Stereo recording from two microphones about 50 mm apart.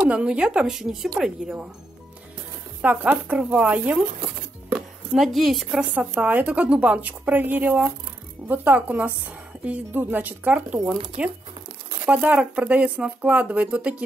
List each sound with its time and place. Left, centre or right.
0.1 s speech: right; by 1.5 s centre
2.8 s speech: right
3.3 s speech: right
3.6 s speech: right
4.7 s speech: centre
5.8 s speech: right
8.8 s speech: right